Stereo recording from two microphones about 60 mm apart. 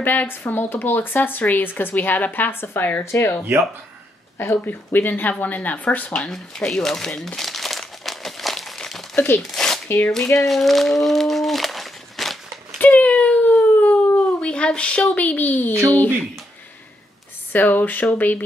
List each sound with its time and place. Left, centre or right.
0.0 s speech: left
3.0 s speech: left
4.6 s speech: left
6.2 s crumpling: centre
9.4 s speech: centre
9.8 s speech: left
10.1 s speech: centre
12.8 s a sound: left
17.5 s speech: left